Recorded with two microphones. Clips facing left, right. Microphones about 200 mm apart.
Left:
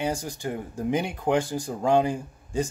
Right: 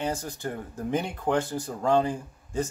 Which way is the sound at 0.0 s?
15° left (ahead or behind).